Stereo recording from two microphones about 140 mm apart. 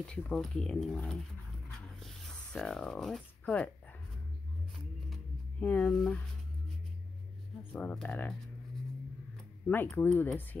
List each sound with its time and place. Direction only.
0.0 s speech: 5° left (ahead or behind)
1.7 s a sound: 5° left (ahead or behind)
4.7 s music: centre (ahead or behind)
5.7 s speech: 10° left (ahead or behind)
7.7 s speech: 10° left (ahead or behind)
9.8 s speech: 10° left (ahead or behind)